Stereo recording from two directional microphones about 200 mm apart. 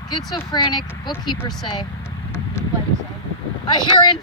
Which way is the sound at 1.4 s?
Centre (ahead or behind).